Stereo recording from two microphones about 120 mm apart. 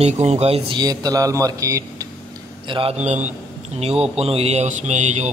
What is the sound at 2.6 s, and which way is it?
Speech, 45° right (ahead or behind).